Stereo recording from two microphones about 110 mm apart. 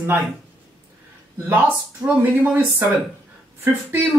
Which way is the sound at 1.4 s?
20° right (ahead or behind).